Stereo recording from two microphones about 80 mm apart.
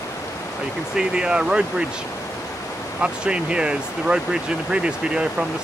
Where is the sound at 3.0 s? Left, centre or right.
Centre.